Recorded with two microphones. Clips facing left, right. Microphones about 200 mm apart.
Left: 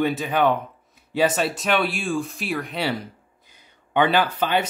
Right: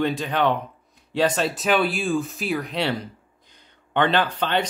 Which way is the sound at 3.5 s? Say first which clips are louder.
Left 2 dB; 10° left (ahead or behind).